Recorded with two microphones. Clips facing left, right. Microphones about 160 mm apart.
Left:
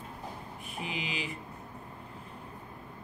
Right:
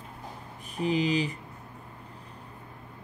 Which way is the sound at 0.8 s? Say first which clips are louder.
Right 12 dB; 40° right (ahead or behind).